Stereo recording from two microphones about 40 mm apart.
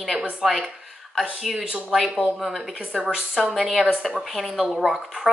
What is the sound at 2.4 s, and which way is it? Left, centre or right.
Speech, centre.